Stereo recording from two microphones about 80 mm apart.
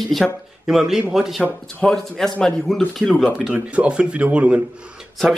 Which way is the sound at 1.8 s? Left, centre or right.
Centre.